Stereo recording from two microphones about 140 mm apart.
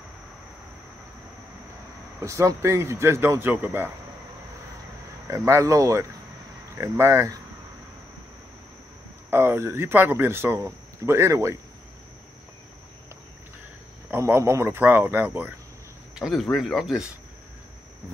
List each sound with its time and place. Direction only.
2.1 s speech: 20° right (ahead or behind)
5.3 s speech: 20° right (ahead or behind)
9.3 s a man's voice: 15° right (ahead or behind)
14.1 s a man's voice: 20° right (ahead or behind)
16.2 s speech: centre (ahead or behind)